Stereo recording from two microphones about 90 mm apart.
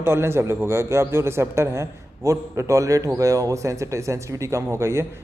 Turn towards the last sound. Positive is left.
turn(degrees=-30)  # may be behind; listen again after turning